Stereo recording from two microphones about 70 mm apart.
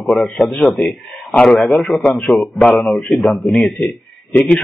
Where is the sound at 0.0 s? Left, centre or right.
Centre.